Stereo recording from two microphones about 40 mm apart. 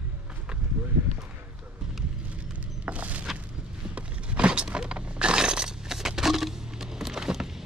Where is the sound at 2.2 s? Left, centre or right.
Right.